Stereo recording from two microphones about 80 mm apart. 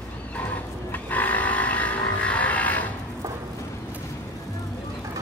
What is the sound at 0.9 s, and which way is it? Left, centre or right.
Vehicle, left.